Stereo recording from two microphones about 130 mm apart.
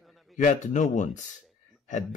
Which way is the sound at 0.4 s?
70° left (ahead or behind).